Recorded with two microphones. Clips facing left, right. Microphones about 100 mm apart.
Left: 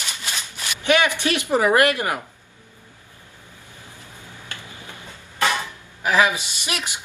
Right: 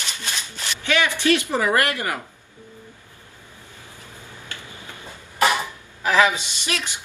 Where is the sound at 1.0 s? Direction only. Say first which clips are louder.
Right 2 dB; 20° left (ahead or behind).